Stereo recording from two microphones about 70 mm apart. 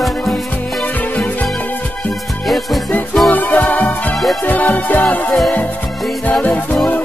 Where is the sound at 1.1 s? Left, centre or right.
Left.